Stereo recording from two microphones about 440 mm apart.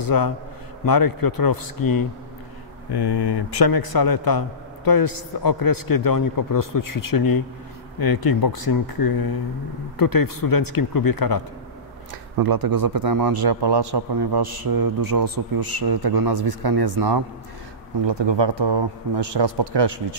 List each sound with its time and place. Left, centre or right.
0.0 s a man's voice: left
2.9 s a man's voice: left
12.4 s a man's voice: right
18.0 s speech: right